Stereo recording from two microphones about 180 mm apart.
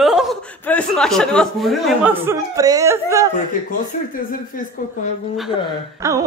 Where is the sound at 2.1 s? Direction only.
15° right (ahead or behind).